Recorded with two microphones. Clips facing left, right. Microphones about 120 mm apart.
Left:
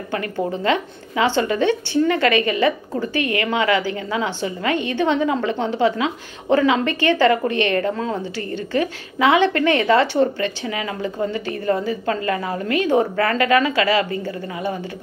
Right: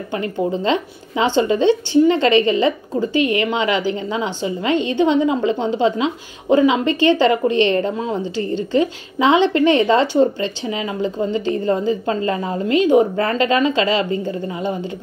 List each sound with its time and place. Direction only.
0.6 s a woman's voice: 25° right (ahead or behind)